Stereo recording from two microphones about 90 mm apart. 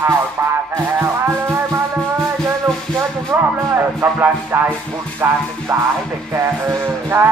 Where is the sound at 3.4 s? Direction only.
25° right (ahead or behind).